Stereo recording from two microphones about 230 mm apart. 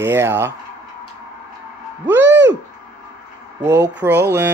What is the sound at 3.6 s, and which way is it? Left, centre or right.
Speech, right.